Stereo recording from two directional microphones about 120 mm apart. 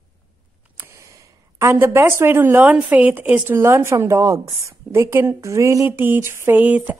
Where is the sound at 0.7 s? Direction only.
20° right (ahead or behind).